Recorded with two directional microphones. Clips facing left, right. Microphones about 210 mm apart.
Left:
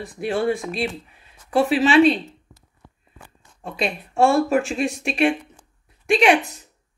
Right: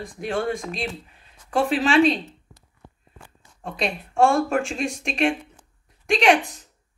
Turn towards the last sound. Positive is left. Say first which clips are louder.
# left 2 dB
turn(degrees=5)  # may be behind; listen again after turning